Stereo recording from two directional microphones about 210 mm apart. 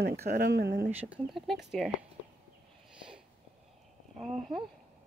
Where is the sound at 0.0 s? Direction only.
50° right (ahead or behind).